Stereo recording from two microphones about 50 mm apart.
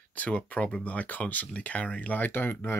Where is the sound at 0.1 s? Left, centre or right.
Left.